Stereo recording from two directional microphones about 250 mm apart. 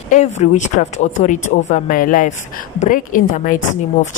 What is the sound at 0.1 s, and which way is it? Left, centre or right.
Speech, left.